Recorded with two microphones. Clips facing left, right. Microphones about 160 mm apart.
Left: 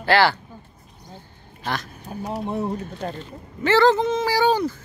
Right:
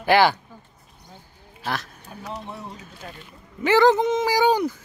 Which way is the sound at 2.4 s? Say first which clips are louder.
Left 11 dB; 55° left (ahead or behind).